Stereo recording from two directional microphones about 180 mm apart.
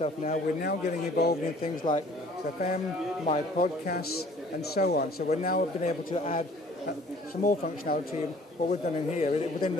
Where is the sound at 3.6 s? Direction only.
55° left (ahead or behind).